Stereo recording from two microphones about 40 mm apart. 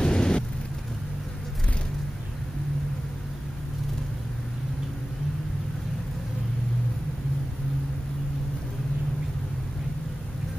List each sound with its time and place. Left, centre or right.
0.0 s vehicle: left